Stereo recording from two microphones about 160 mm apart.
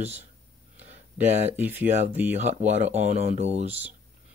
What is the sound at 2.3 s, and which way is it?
Speech, 45° right (ahead or behind).